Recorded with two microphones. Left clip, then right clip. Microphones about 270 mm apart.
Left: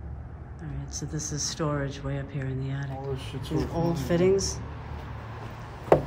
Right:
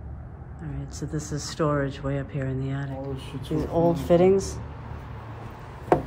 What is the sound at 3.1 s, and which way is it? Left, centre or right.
Speech, left.